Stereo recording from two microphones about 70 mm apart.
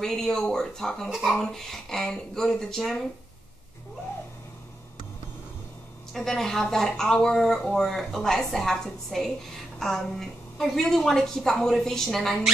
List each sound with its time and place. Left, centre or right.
0.0 s speech: centre
6.1 s speech: centre